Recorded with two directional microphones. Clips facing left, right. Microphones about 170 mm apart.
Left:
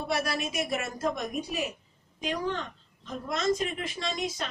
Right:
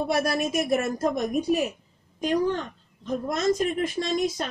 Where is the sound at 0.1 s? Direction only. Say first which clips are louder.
Right 3 dB; 45° right (ahead or behind).